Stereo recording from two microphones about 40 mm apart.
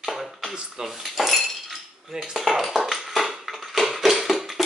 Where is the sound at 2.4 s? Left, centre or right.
Centre.